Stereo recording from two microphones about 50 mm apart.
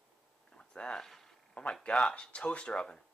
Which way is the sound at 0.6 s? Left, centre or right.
Centre.